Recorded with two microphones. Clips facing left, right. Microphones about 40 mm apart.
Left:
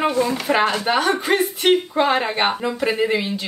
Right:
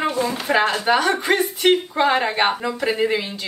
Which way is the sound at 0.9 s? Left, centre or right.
Centre.